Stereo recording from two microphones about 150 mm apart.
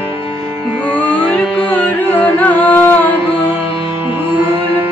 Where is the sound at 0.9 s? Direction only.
10° left (ahead or behind).